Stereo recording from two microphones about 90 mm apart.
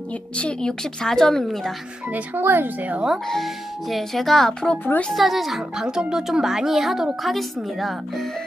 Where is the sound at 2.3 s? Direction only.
25° right (ahead or behind).